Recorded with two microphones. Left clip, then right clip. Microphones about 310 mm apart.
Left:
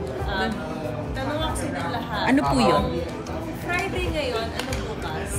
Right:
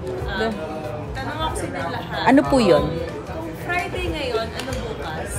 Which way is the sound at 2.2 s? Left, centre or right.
Centre.